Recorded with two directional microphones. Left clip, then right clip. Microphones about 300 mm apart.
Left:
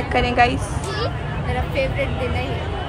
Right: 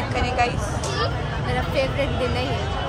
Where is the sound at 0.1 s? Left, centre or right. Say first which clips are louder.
Left 6 dB; left.